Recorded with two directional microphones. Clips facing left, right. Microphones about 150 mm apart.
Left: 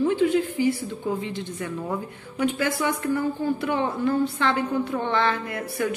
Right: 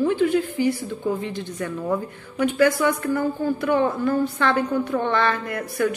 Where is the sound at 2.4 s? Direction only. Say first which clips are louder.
Right 5 dB; 20° left (ahead or behind).